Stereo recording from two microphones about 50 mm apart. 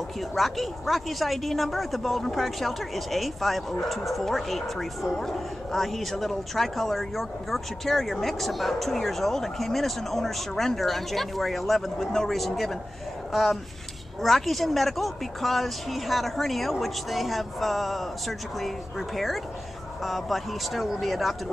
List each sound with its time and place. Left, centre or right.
0.4 s a man's voice: centre